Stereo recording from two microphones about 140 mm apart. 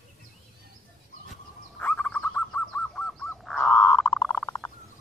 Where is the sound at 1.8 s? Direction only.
10° left (ahead or behind).